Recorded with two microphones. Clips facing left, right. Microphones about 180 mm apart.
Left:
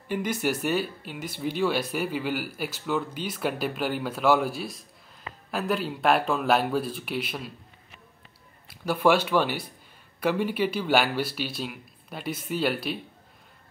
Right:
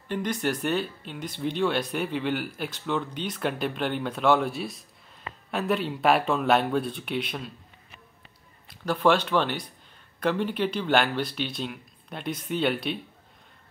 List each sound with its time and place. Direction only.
0.1 s speech: 5° left (ahead or behind)
8.6 s speech: 10° left (ahead or behind)